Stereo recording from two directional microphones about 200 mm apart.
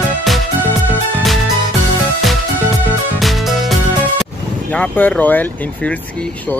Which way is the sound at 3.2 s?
Centre (ahead or behind).